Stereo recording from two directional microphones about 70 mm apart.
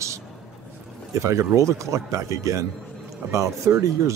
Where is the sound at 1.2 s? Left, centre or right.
Right.